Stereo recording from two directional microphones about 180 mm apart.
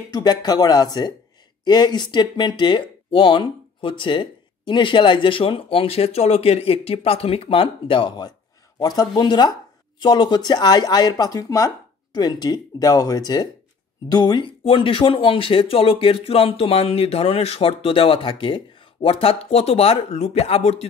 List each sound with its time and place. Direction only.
0.1 s speech: 20° left (ahead or behind)